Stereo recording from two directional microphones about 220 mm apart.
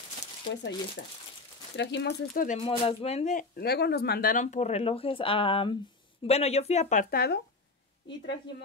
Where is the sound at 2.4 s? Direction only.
25° left (ahead or behind); by 7.4 s 40° left (ahead or behind).